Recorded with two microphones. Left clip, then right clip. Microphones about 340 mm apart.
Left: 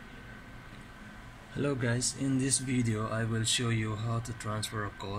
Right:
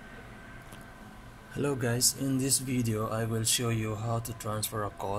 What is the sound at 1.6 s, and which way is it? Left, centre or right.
Speech, centre.